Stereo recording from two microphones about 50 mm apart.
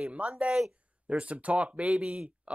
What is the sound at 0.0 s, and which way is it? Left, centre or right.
Speech, right.